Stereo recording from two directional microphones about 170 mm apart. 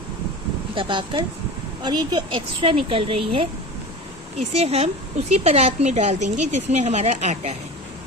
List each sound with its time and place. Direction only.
0.7 s a woman's voice: 30° right (ahead or behind)
4.4 s speech: 40° right (ahead or behind)